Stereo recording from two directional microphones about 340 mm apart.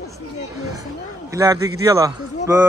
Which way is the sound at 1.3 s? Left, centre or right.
Centre.